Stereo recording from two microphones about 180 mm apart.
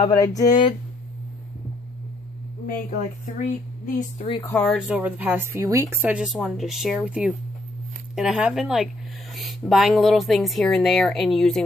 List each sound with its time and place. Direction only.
0.0 s speech: 20° left (ahead or behind)
2.6 s a woman's voice: 40° left (ahead or behind)
4.6 s a woman's voice: centre (ahead or behind)